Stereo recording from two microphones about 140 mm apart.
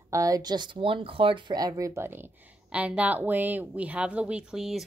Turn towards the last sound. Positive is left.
turn(degrees=0)  # may be behind; listen again after turning